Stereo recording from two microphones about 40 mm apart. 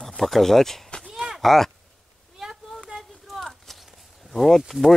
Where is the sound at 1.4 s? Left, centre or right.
Centre.